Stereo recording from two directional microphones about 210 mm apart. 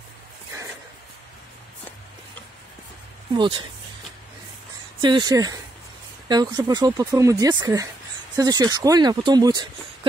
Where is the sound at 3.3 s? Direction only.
20° right (ahead or behind).